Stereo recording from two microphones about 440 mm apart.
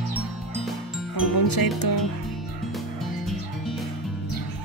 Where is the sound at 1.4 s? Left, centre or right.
Left.